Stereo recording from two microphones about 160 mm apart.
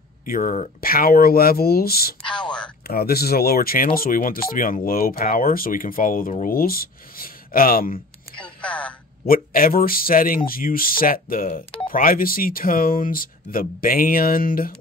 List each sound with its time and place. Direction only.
0.2 s speech: 60° left (ahead or behind)
8.5 s speech: 5° left (ahead or behind)
9.3 s speech: 65° left (ahead or behind)